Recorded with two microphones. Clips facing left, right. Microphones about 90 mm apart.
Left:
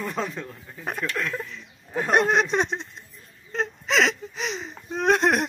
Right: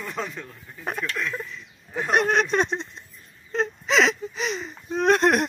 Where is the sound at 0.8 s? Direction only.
Centre (ahead or behind).